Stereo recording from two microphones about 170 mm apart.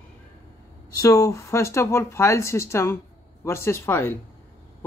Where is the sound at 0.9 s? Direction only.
20° left (ahead or behind).